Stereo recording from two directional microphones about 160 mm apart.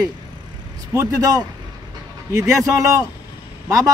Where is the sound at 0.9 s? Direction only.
20° right (ahead or behind).